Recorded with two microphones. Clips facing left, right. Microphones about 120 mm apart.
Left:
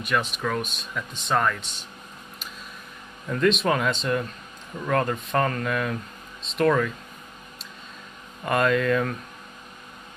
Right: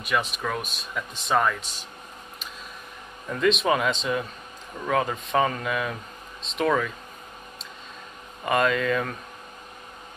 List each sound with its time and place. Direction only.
0.0 s speech: centre (ahead or behind)
3.3 s speech: centre (ahead or behind)
8.5 s speech: centre (ahead or behind)